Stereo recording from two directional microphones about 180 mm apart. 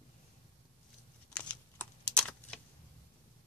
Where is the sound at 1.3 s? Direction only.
5° left (ahead or behind).